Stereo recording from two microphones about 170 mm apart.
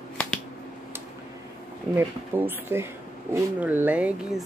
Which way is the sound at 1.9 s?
10° right (ahead or behind).